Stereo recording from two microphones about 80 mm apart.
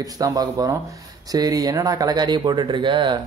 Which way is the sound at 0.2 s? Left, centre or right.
Right.